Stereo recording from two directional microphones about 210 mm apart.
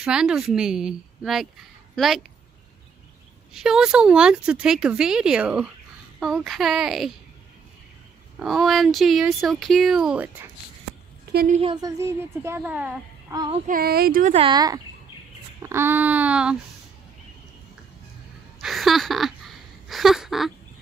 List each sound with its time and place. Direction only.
0.0 s a woman's voice: 5° right (ahead or behind)
3.5 s speech: 5° right (ahead or behind)
8.4 s speech: centre (ahead or behind)
11.6 s a woman's voice: 20° right (ahead or behind)
13.3 s speech: 20° right (ahead or behind)
13.7 s speech: 45° right (ahead or behind)
14.3 s a woman's voice: 25° right (ahead or behind); by 16.5 s 5° right (ahead or behind)
18.6 s a sound: centre (ahead or behind)